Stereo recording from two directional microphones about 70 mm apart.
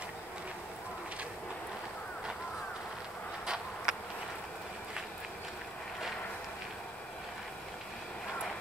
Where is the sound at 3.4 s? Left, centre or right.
Centre.